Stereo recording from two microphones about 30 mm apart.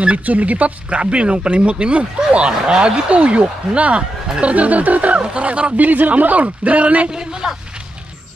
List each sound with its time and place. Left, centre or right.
0.2 s speech: right
0.8 s speech: right
2.6 s a man's voice: right
3.1 s speech: right
5.2 s speech: right
5.8 s speech: right
7.1 s a man's voice: right